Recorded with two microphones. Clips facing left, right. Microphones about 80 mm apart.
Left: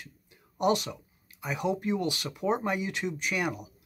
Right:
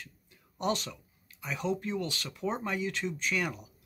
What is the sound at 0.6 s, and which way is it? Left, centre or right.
Speech, centre.